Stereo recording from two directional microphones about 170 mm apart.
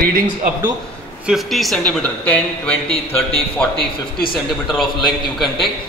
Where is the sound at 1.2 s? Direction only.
Centre (ahead or behind).